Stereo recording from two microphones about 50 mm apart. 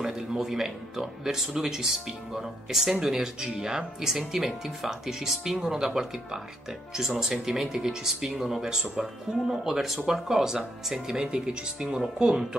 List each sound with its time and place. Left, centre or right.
0.0 s speech: centre